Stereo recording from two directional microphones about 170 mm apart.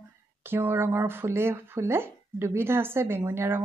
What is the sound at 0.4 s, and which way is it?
A woman's voice, 15° right (ahead or behind).